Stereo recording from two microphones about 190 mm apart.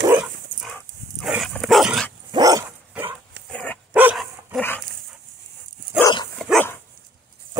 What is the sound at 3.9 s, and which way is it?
Dog, 5° right (ahead or behind).